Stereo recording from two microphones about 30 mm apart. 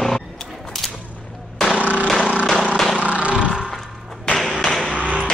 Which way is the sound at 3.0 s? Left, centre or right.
Right.